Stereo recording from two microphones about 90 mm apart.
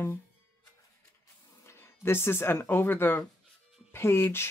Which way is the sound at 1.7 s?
30° left (ahead or behind).